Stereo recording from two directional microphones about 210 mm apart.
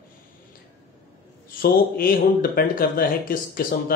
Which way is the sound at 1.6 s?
45° left (ahead or behind).